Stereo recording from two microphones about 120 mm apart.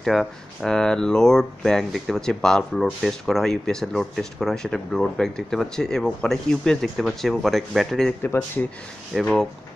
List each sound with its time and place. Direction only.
0.0 s speech: centre (ahead or behind)
8.2 s speech: 15° left (ahead or behind)
9.1 s speech: 5° left (ahead or behind)